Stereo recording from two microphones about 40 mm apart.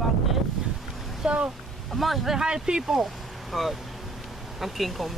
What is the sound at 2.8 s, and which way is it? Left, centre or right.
Speech, centre.